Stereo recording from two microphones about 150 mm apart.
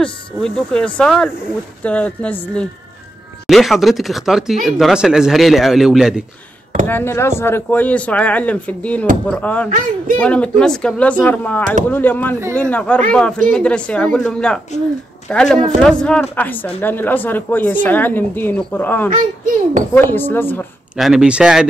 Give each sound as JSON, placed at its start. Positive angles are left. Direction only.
{"t": 0.0, "sound": "speech", "side_deg": 5}
{"t": 6.9, "sound": "speech", "side_deg": 15}
{"t": 9.7, "sound": "speech", "side_deg": -60}
{"t": 10.1, "sound": "speech", "side_deg": 10}
{"t": 20.9, "sound": "speech", "side_deg": -5}